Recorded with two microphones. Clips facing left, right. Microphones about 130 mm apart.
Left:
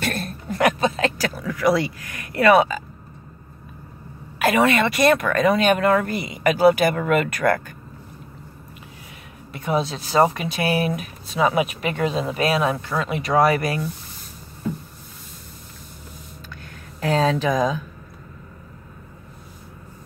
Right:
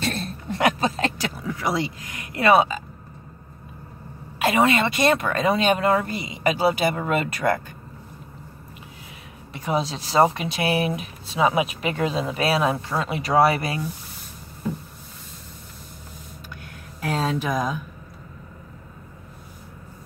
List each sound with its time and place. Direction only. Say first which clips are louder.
0.0 s a sound: left 1 dB; 25° right (ahead or behind)
1.1 s speech: left 3 dB; 25° right (ahead or behind)
4.4 s speech: left 2 dB; 25° right (ahead or behind)
9.5 s speech: left 2 dB; 30° right (ahead or behind)
17.0 s speech: left 5 dB; 90° left